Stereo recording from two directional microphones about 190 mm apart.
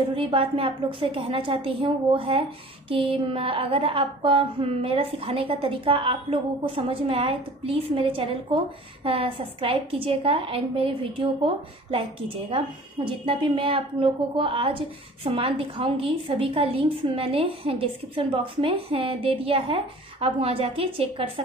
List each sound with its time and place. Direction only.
0.1 s a woman's voice: 25° right (ahead or behind)